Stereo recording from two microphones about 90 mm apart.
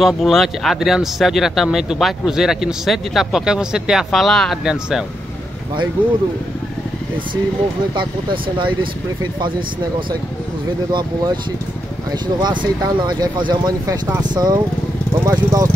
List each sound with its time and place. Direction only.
0.0 s speech: centre (ahead or behind)
10.9 s speech: 60° right (ahead or behind)
15.2 s speech: 40° right (ahead or behind)